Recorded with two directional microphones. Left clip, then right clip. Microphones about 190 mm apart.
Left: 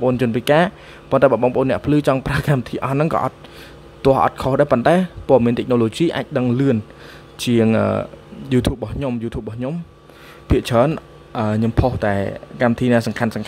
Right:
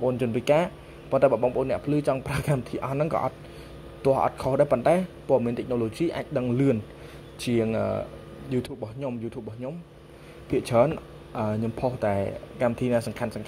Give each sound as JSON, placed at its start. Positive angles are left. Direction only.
{"t": 0.0, "sound": "speech", "side_deg": 25}
{"t": 10.5, "sound": "speech", "side_deg": 20}